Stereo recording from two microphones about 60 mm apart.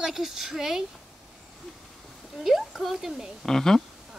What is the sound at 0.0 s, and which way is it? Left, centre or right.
Speech, centre.